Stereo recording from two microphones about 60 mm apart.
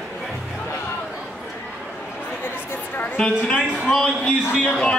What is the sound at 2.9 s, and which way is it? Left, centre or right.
Speech, left.